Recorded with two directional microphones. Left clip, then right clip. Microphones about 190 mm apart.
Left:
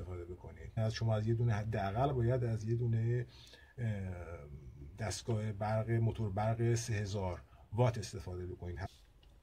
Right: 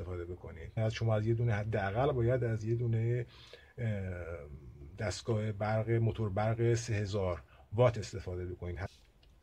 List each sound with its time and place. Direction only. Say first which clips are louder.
0.1 s speech: right 4 dB; 35° right (ahead or behind)